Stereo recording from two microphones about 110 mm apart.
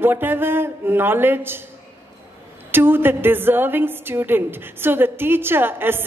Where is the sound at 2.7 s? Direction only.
20° right (ahead or behind).